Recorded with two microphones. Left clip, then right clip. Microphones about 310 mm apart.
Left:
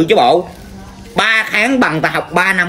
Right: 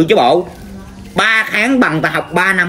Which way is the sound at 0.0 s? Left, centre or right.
Centre.